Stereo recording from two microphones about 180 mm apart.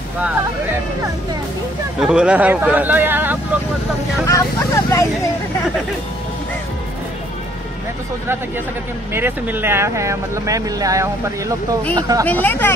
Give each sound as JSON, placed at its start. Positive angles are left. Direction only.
{"t": 2.0, "sound": "speech", "side_deg": -5}
{"t": 4.3, "sound": "speech", "side_deg": 15}
{"t": 9.1, "sound": "speech", "side_deg": -10}
{"t": 12.3, "sound": "speech", "side_deg": 10}